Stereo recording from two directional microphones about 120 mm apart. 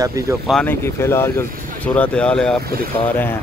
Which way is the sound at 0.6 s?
20° left (ahead or behind).